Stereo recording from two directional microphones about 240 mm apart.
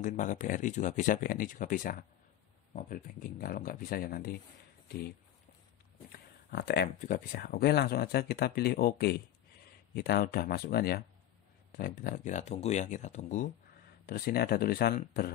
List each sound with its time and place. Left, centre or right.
0.0 s speech: left
6.5 s speech: left